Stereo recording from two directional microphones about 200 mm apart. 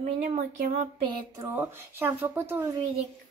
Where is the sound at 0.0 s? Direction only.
35° right (ahead or behind).